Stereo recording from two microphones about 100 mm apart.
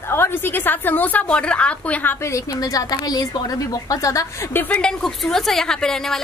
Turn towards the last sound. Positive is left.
turn(degrees=5)  # may be behind; listen again after turning